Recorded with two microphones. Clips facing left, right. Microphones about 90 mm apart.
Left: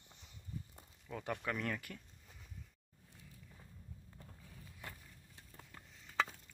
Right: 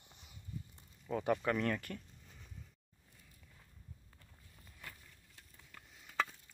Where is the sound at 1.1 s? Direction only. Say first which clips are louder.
Right 7 dB; 5° right (ahead or behind).